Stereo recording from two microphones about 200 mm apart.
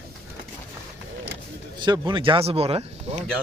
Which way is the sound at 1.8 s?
20° right (ahead or behind).